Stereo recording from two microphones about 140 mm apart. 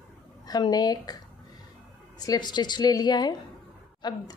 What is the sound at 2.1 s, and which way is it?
A woman's voice, 30° left (ahead or behind).